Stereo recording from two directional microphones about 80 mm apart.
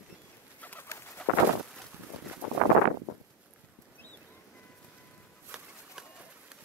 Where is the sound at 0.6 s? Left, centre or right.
Left.